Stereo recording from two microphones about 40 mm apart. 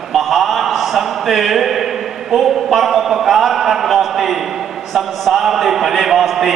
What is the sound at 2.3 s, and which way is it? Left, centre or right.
A man's voice, centre.